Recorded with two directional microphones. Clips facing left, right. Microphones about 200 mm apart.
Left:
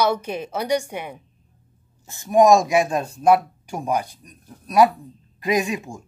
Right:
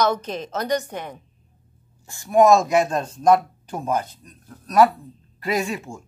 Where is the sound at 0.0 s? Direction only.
10° left (ahead or behind).